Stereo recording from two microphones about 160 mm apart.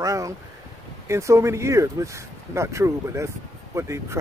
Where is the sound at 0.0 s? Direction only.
20° right (ahead or behind).